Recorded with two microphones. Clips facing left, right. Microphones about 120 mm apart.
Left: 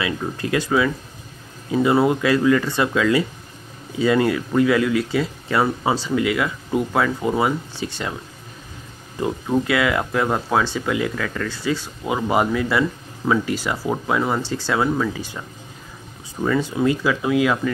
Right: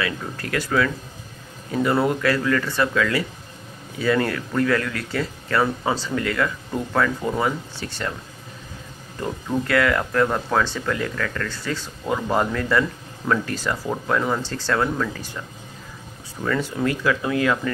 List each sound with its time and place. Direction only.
0.0 s speech: 20° left (ahead or behind)
9.2 s speech: 15° left (ahead or behind)
16.4 s speech: 15° left (ahead or behind)